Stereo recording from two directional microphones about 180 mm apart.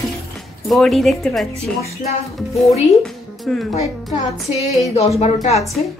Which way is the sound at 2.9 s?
Centre (ahead or behind).